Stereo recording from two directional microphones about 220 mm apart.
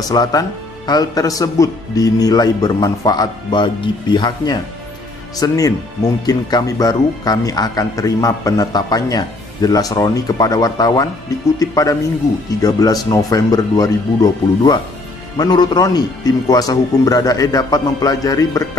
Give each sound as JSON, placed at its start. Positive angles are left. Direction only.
{"t": 0.1, "sound": "speech", "side_deg": 15}